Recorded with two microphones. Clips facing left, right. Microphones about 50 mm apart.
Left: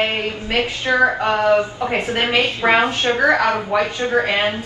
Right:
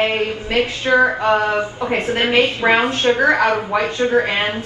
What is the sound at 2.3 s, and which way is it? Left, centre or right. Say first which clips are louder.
A woman's voice: right 2 dB; right.